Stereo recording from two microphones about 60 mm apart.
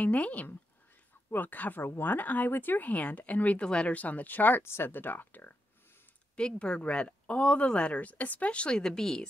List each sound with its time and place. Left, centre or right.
0.0 s speech: left
6.3 s speech: centre